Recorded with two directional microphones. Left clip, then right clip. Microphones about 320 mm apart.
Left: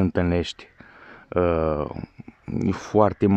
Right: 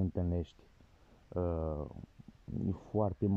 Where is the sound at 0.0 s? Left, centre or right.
Left.